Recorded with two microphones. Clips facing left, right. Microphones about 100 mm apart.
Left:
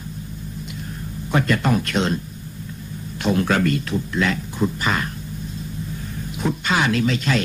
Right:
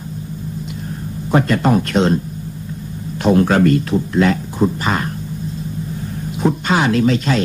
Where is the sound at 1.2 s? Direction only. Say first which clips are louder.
Right 5 dB; 35° right (ahead or behind).